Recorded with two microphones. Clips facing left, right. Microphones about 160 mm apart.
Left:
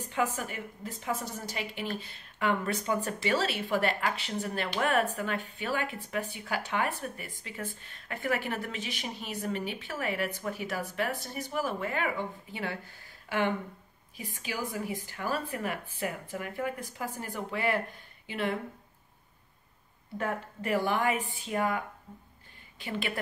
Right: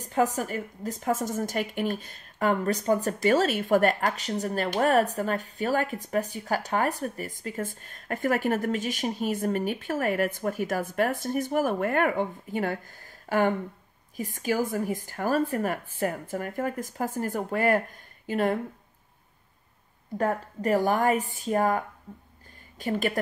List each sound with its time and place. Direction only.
0.0 s a woman's voice: 40° right (ahead or behind)
20.2 s a woman's voice: 40° right (ahead or behind)